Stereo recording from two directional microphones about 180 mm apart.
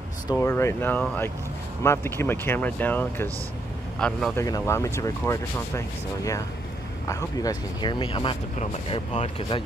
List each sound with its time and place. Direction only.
0.3 s speech: 15° left (ahead or behind)
4.4 s speech: 15° left (ahead or behind)
8.5 s speech: 40° left (ahead or behind)